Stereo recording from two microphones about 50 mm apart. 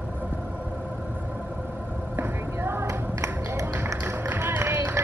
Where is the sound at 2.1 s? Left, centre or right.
Right.